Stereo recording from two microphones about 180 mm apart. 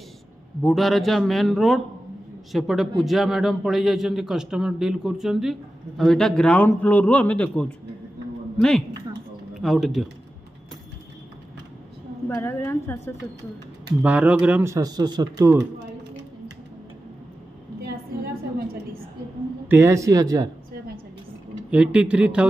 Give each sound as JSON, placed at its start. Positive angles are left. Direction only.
{"t": 0.6, "sound": "a man's voice", "side_deg": 0}
{"t": 12.4, "sound": "a woman's voice", "side_deg": 15}
{"t": 14.0, "sound": "speech", "side_deg": -5}
{"t": 19.7, "sound": "speech", "side_deg": -15}
{"t": 21.6, "sound": "a man's voice", "side_deg": -5}